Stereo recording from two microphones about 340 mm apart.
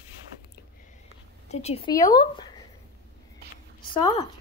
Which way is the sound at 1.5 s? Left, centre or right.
Centre.